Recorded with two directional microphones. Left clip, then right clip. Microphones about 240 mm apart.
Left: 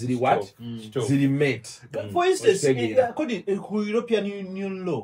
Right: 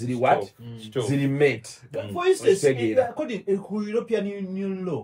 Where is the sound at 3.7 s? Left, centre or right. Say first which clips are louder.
Left 2 dB; centre.